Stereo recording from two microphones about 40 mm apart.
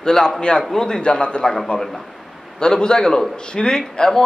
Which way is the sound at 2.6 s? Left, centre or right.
Centre.